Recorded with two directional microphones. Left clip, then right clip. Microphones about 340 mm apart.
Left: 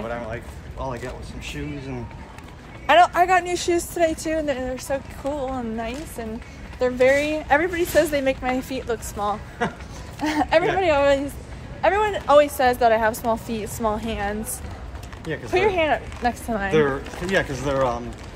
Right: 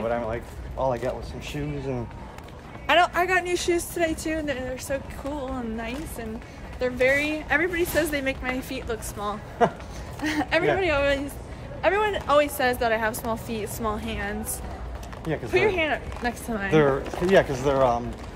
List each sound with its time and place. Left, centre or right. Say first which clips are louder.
0.0 s speech: right 3 dB; centre
2.9 s speech: left 5 dB; centre
9.6 s speech: right 6 dB; right
10.2 s speech: left 4 dB; centre
15.5 s speech: left 3 dB; centre
16.7 s speech: right 1 dB; right